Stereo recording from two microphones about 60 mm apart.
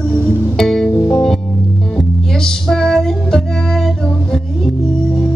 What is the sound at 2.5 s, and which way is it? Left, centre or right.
Music, centre.